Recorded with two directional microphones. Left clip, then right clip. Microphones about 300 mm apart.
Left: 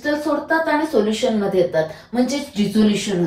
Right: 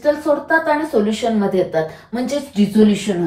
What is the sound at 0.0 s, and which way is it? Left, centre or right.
A woman's voice, centre.